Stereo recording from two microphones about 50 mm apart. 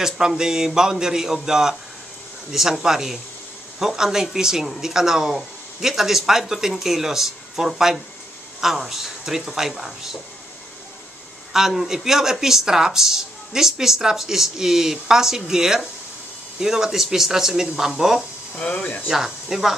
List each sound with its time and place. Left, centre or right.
0.4 s speech: centre
11.5 s speech: centre
18.6 s speech: left
19.0 s speech: centre